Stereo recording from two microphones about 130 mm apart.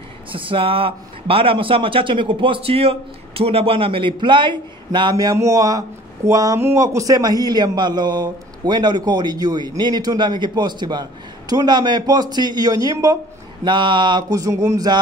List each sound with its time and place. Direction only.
0.3 s a man's voice: 40° right (ahead or behind)